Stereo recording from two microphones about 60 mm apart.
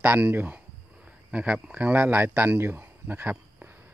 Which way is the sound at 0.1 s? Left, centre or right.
Right.